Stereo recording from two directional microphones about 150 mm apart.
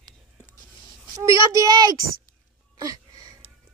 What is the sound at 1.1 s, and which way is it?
Speech, 20° right (ahead or behind).